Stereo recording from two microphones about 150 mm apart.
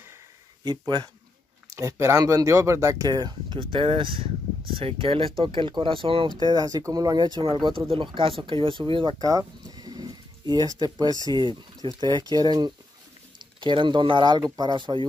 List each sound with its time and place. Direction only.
0.7 s speech: 30° right (ahead or behind)